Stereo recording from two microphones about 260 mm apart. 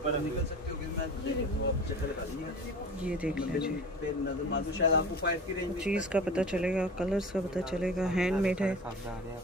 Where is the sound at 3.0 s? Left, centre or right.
Centre.